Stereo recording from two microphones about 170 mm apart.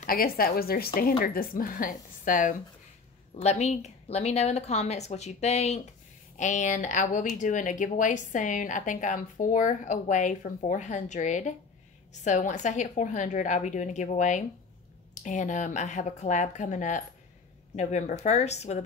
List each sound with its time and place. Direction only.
0.0 s a woman's voice: 60° left (ahead or behind); by 18.8 s 40° left (ahead or behind)